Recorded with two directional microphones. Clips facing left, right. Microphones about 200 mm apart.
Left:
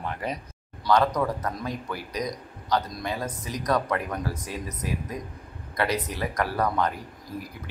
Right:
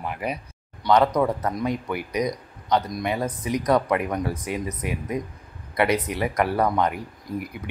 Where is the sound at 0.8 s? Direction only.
25° right (ahead or behind).